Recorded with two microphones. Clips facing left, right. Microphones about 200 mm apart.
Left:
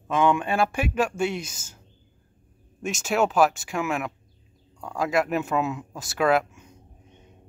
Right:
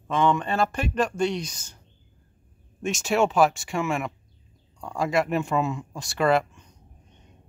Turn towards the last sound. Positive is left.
turn(degrees=5)  # may be behind; listen again after turning